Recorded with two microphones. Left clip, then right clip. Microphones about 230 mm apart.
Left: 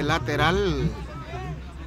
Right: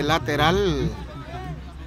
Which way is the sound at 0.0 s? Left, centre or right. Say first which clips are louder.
Right 2 dB; right.